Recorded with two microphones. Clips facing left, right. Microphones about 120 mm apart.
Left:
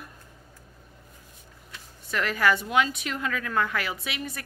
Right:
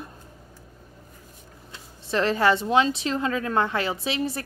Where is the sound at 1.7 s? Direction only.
30° right (ahead or behind).